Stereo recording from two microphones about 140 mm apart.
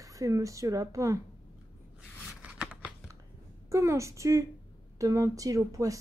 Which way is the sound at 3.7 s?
20° right (ahead or behind).